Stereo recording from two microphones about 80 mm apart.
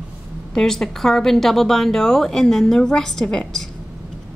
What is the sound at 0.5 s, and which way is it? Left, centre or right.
A woman's voice, centre.